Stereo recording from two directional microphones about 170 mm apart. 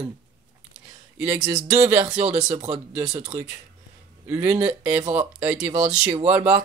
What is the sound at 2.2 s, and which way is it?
Speech, 35° right (ahead or behind).